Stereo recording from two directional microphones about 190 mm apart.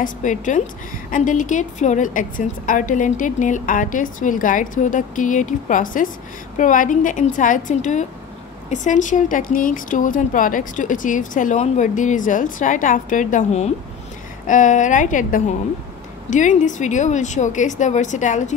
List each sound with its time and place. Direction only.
0.0 s speech: 40° left (ahead or behind)